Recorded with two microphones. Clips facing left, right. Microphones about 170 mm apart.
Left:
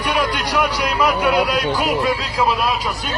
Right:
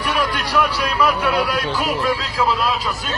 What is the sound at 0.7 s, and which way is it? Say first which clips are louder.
Speech: left 1 dB; 15° left (ahead or behind).